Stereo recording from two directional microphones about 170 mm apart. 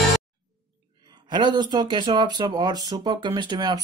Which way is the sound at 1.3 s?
25° right (ahead or behind).